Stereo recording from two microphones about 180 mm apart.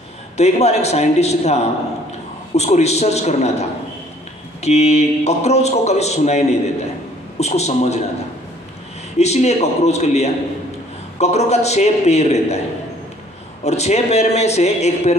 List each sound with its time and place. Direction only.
0.4 s a man's voice: 35° left (ahead or behind)
9.2 s a man's voice: 40° left (ahead or behind)
13.7 s a man's voice: 40° left (ahead or behind)